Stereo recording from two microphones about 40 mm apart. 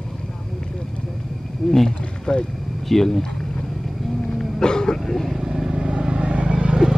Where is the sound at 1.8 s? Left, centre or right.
Left.